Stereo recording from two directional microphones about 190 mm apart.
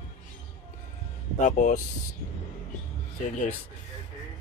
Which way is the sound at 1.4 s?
40° left (ahead or behind).